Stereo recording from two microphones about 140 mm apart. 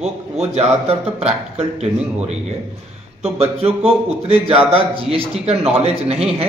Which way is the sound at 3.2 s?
45° right (ahead or behind).